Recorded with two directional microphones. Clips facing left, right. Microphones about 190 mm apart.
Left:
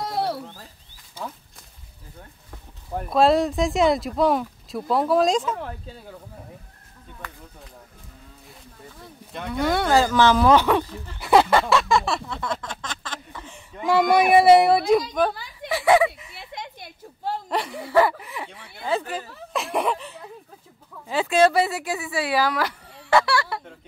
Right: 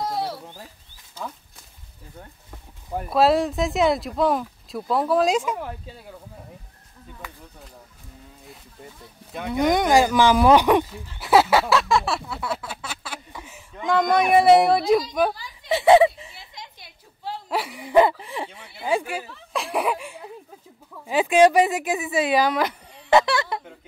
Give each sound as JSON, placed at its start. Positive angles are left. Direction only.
{"t": 0.1, "sound": "a sound", "side_deg": 60}
{"t": 2.9, "sound": "speech", "side_deg": -5}
{"t": 7.2, "sound": "speech", "side_deg": -5}
{"t": 9.5, "sound": "speech", "side_deg": -15}
{"t": 11.1, "sound": "a sound", "side_deg": 0}
{"t": 13.8, "sound": "speech", "side_deg": 5}
{"t": 15.7, "sound": "speech", "side_deg": -25}
{"t": 16.3, "sound": "a sound", "side_deg": 60}
{"t": 17.5, "sound": "speech", "side_deg": -10}
{"t": 18.8, "sound": "speech", "side_deg": -10}
{"t": 19.5, "sound": "speech", "side_deg": 0}